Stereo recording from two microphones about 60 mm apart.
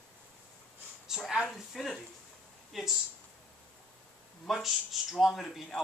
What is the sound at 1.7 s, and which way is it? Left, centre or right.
Speech, centre.